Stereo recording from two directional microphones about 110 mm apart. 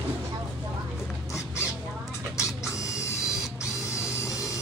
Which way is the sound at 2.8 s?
30° left (ahead or behind).